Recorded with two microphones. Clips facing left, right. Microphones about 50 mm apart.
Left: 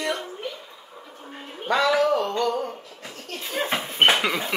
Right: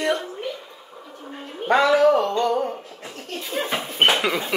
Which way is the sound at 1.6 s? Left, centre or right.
Right.